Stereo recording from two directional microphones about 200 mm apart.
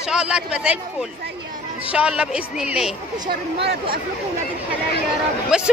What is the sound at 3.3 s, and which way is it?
Speech, 50° right (ahead or behind).